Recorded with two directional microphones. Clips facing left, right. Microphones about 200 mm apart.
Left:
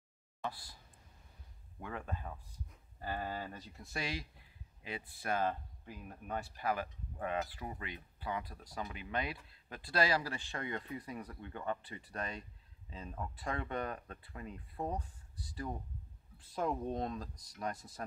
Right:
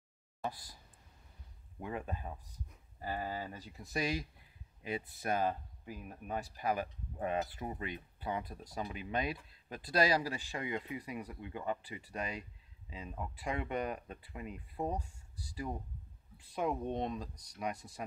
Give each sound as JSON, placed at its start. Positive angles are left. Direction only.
{"t": 0.4, "sound": "speech", "side_deg": -20}
{"t": 1.8, "sound": "speech", "side_deg": -20}